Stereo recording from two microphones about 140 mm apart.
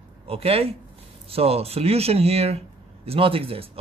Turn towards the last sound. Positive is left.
turn(degrees=-40)  # may be behind; listen again after turning